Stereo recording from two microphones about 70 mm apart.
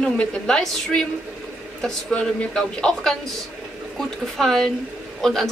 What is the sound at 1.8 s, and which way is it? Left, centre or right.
Speech, centre.